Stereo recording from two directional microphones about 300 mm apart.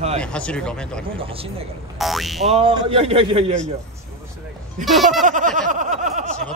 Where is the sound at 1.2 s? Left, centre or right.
Centre.